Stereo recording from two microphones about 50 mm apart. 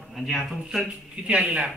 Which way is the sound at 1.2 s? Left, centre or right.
Right.